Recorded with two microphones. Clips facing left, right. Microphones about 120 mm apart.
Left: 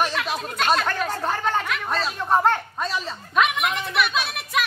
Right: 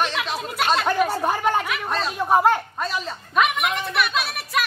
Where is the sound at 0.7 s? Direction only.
10° right (ahead or behind).